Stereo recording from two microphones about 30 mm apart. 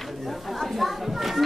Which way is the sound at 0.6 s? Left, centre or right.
Centre.